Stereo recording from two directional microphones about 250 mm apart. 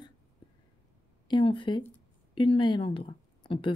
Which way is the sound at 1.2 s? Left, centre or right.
Centre.